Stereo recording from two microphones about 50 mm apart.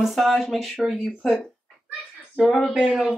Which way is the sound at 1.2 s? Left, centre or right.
Centre.